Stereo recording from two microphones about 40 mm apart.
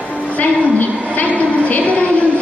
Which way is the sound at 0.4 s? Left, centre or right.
Left.